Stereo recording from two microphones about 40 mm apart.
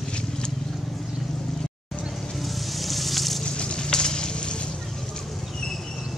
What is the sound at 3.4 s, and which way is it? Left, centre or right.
Fire, left.